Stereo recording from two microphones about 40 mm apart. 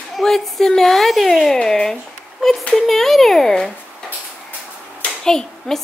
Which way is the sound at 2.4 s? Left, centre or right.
Centre.